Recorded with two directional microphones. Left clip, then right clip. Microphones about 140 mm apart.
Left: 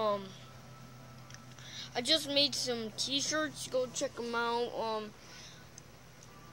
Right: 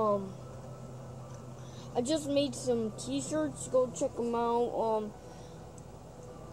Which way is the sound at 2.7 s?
65° left (ahead or behind).